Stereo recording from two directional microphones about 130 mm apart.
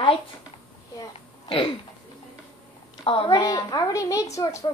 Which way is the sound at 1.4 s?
45° left (ahead or behind).